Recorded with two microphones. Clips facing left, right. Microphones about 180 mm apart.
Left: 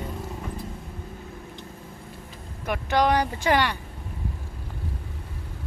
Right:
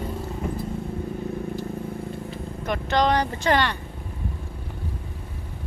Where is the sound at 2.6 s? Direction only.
10° left (ahead or behind).